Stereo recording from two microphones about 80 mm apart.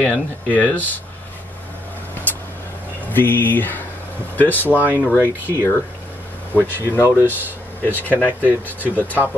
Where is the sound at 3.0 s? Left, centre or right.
Left.